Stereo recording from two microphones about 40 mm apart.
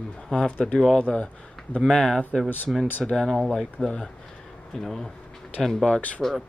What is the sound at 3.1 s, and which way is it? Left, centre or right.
Speech, centre.